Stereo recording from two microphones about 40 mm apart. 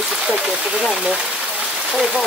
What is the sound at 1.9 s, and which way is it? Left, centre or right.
Speech, centre.